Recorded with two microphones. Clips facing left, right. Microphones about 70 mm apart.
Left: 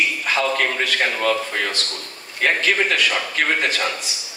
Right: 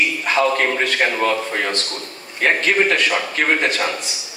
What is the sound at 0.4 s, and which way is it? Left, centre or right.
A man's voice, right.